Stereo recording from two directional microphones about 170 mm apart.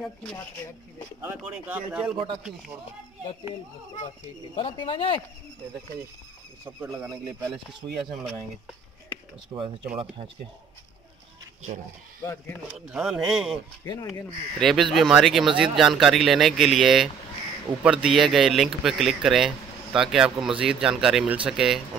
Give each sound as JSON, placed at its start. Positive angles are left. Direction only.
{"t": 1.2, "sound": "speech", "side_deg": -10}
{"t": 4.6, "sound": "speech", "side_deg": 30}
{"t": 9.5, "sound": "speech", "side_deg": -25}
{"t": 12.2, "sound": "speech", "side_deg": 15}
{"t": 12.7, "sound": "speech", "side_deg": -5}
{"t": 14.6, "sound": "speech", "side_deg": 0}